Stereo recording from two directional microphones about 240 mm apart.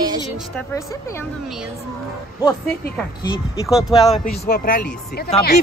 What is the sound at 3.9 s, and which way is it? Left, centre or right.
Speech, left.